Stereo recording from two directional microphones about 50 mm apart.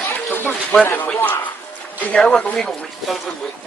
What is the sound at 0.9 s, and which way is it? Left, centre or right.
Speech, left.